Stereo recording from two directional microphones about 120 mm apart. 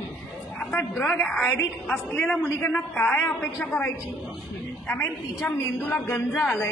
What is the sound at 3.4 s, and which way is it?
Speech, 5° left (ahead or behind).